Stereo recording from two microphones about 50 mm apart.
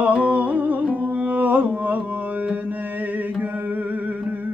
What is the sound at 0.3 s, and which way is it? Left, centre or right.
Music, right.